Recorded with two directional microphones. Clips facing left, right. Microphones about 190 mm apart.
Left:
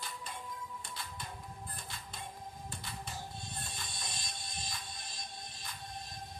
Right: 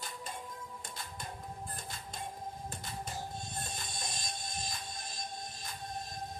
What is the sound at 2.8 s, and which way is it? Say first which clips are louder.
Music: right 3 dB; 45° right (ahead or behind).